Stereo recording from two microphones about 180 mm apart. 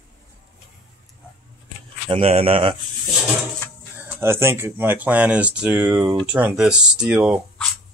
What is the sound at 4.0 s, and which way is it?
Speech, 10° right (ahead or behind).